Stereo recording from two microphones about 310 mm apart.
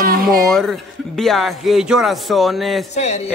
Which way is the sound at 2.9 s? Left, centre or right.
Left.